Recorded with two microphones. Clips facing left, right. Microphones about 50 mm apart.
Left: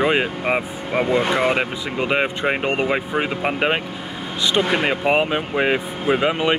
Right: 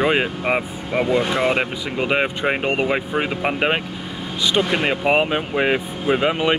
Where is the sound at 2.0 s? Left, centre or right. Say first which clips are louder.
Even; centre.